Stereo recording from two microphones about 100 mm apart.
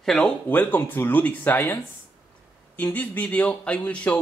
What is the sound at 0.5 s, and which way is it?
Speech, 15° left (ahead or behind).